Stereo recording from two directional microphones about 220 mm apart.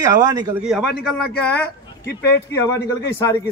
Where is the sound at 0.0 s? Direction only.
15° right (ahead or behind).